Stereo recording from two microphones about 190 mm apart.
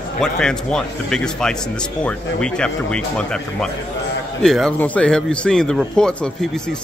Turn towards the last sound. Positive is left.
turn(degrees=5)  # may be behind; listen again after turning